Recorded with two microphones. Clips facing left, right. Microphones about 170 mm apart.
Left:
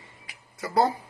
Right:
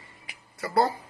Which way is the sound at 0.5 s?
10° left (ahead or behind).